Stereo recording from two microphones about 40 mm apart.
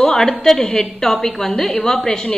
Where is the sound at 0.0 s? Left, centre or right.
Centre.